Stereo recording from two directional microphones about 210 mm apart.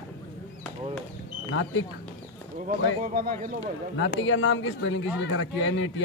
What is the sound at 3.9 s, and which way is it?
Speech, 65° left (ahead or behind).